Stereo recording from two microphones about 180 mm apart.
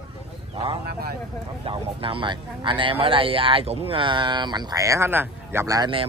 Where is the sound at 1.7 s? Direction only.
30° right (ahead or behind).